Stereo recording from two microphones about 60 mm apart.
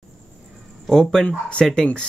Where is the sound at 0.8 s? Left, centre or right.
Centre.